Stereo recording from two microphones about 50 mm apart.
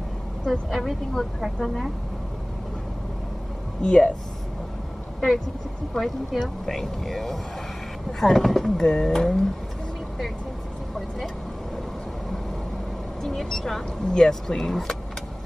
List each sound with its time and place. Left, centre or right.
0.5 s speech: centre
3.8 s speech: centre
5.9 s speech: centre
13.2 s speech: centre